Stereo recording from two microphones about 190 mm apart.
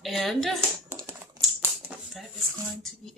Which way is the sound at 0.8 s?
15° right (ahead or behind).